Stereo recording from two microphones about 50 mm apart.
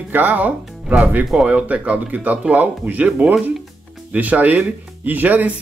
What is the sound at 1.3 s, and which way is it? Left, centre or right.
Speech, centre.